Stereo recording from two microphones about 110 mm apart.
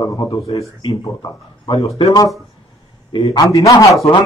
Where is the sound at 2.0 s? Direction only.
35° left (ahead or behind).